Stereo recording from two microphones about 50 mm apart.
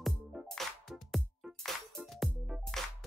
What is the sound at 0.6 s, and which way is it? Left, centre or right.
Music, centre.